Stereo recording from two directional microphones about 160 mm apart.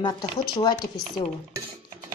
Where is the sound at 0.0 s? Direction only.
25° left (ahead or behind).